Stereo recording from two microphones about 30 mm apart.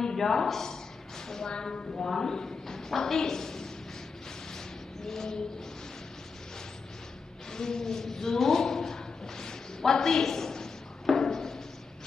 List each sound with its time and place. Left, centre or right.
0.0 s a man's voice: centre
5.0 s a woman's voice: centre
7.5 s a sound: left